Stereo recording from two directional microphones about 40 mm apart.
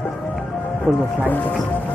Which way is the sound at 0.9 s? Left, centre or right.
Right.